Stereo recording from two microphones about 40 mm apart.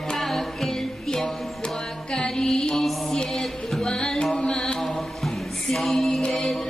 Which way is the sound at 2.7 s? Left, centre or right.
Centre.